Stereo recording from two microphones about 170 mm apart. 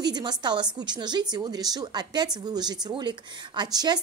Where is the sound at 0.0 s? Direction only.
25° right (ahead or behind).